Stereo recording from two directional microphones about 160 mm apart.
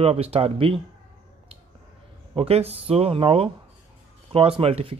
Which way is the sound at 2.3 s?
35° right (ahead or behind).